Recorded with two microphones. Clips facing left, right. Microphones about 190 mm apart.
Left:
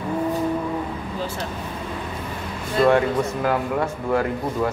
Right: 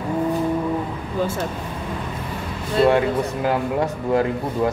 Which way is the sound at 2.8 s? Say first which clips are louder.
Right 1 dB; 30° right (ahead or behind).